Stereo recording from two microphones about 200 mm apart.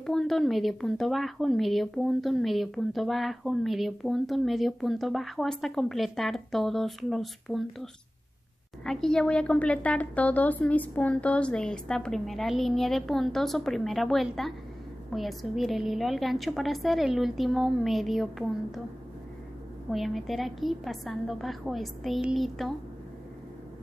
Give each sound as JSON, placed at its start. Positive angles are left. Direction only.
{"t": 0.0, "sound": "speech", "side_deg": 0}
{"t": 19.9, "sound": "speech", "side_deg": 0}